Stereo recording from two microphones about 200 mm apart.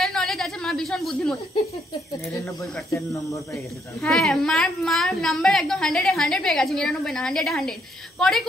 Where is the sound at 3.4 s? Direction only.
Centre (ahead or behind).